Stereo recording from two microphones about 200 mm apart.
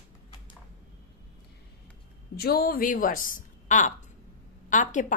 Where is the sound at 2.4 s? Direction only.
50° left (ahead or behind).